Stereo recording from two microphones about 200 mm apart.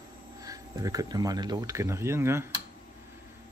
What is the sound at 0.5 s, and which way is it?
Speech, 15° right (ahead or behind).